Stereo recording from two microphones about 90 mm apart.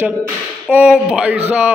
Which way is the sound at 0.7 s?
10° right (ahead or behind).